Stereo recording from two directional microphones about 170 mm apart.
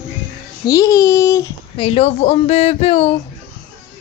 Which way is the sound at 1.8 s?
35° left (ahead or behind).